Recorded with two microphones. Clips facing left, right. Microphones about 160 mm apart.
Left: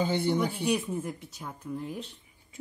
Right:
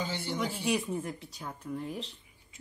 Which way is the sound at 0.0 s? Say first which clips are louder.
Left 7 dB; 55° left (ahead or behind).